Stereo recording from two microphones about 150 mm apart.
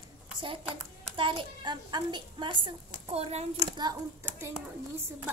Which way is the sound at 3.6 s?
25° right (ahead or behind).